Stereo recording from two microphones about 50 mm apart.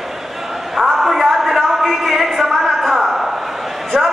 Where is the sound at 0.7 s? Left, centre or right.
Centre.